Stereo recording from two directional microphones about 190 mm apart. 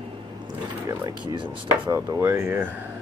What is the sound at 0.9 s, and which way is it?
Speech, 20° right (ahead or behind).